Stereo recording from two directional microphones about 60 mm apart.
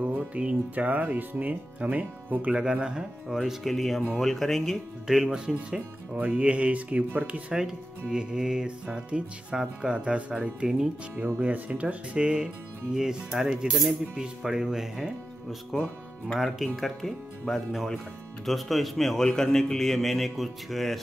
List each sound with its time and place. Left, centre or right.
0.0 s speech: right
2.5 s a man's voice: centre
5.0 s speech: centre
7.5 s speech: centre
11.3 s speech: right; by 15.1 s centre
16.3 s a man's voice: centre